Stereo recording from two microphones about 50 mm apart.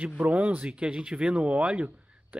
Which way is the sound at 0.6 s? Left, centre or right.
Right.